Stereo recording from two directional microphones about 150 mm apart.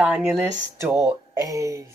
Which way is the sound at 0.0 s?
5° right (ahead or behind).